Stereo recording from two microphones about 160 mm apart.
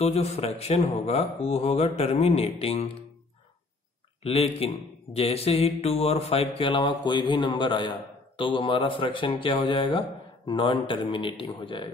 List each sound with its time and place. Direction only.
0.0 s speech: 40° left (ahead or behind)
4.2 s speech: 35° left (ahead or behind)